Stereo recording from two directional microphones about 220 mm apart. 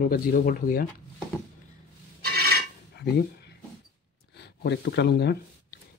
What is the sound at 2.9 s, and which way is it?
Dishes, 50° left (ahead or behind).